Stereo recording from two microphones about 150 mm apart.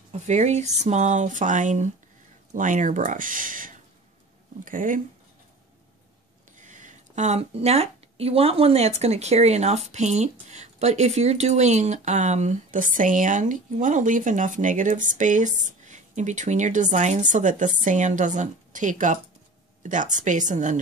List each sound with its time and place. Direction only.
0.1 s speech: 50° right (ahead or behind)
6.6 s speech: 55° right (ahead or behind)